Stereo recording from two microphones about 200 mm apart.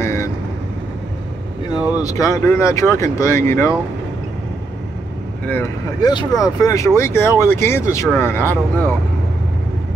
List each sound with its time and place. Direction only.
0.0 s vehicle: 15° left (ahead or behind)
2.0 s speech: 15° left (ahead or behind)
5.5 s speech: 10° left (ahead or behind)